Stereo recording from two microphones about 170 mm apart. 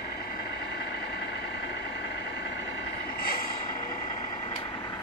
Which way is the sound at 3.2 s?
60° left (ahead or behind).